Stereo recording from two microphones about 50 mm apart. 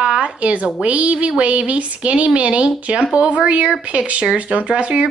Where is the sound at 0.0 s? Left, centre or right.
Centre.